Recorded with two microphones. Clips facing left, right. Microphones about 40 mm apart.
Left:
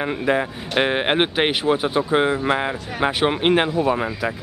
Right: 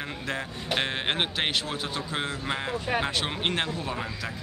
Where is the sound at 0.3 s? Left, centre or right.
Left.